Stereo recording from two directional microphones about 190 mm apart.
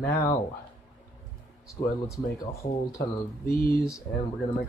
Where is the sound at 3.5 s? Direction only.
50° left (ahead or behind).